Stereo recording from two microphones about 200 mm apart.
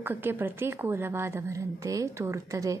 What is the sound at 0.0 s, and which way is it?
A woman's voice, 10° right (ahead or behind).